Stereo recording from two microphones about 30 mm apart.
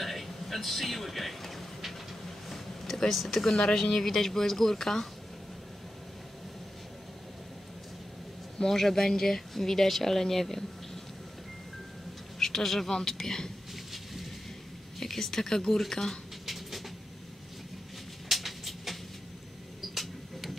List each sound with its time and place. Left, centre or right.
0.0 s a sound: centre
3.0 s speech: centre
8.6 s speech: centre
12.4 s a man's voice: centre
15.0 s speech: centre
16.4 s vehicle: centre
18.3 s a sound: centre
20.0 s tick-tock: centre